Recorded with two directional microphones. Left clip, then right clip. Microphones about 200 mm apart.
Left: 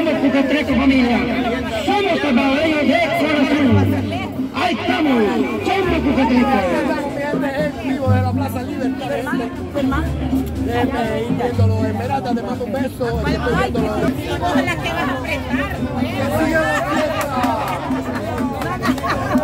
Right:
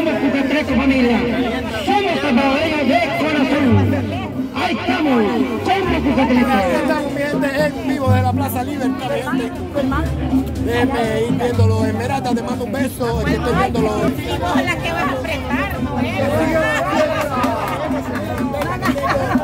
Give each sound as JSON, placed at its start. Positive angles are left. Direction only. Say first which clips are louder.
{"t": 0.0, "sound": "a sound", "louder": "left 1 dB", "side_deg": 0}
{"t": 6.4, "sound": "speech", "louder": "right 1 dB", "side_deg": -55}
{"t": 7.5, "sound": "music", "louder": "right 3 dB", "side_deg": -60}
{"t": 11.4, "sound": "speech", "louder": "right 2 dB", "side_deg": -65}